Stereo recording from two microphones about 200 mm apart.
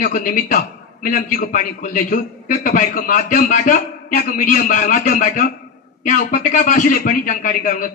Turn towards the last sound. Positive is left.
turn(degrees=45)  # may be behind; listen again after turning